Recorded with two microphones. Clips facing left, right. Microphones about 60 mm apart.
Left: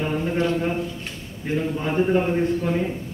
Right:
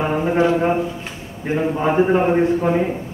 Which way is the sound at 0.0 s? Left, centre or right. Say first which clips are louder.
Right 6 dB; right.